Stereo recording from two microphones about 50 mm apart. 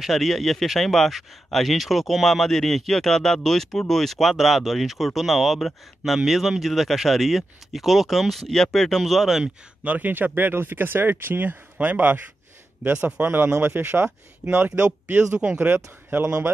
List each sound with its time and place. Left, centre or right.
0.0 s speech: centre
9.8 s speech: right